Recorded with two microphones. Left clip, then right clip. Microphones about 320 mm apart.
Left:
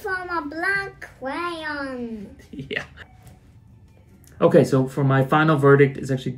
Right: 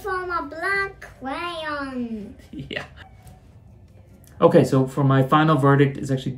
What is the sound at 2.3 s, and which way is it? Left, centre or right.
Speech, centre.